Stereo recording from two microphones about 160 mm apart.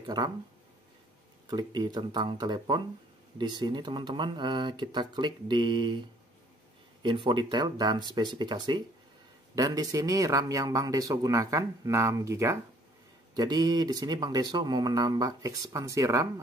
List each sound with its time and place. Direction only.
0.0 s speech: 25° right (ahead or behind)
1.5 s speech: 25° right (ahead or behind)